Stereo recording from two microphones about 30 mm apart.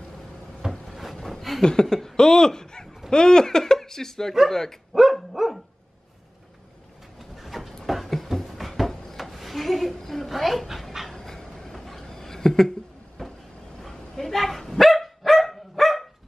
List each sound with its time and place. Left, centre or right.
0.6 s wood: right
1.1 s a sound: centre
1.6 s speech: left
5.3 s dog: centre
7.2 s vehicle: centre
7.8 s a sound: centre
9.9 s a woman's voice: centre
10.3 s speech: centre
11.1 s a sound: centre
13.2 s vehicle: centre
13.7 s dog: centre